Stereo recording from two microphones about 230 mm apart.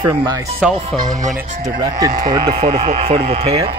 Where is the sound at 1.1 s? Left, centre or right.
Right.